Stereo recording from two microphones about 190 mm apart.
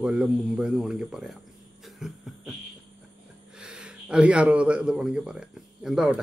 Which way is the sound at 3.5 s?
5° right (ahead or behind).